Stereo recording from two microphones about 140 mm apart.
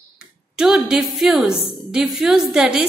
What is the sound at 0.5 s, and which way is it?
Speech, 5° right (ahead or behind).